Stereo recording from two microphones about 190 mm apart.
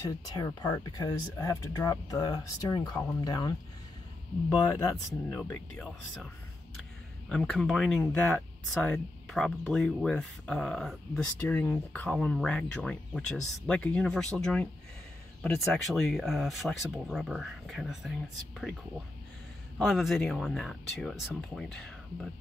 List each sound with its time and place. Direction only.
0.0 s speech: 20° left (ahead or behind)
5.3 s speech: 5° left (ahead or behind)
19.8 s speech: centre (ahead or behind)